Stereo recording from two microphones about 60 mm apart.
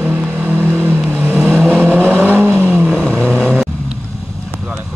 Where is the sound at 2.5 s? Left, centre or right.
Right.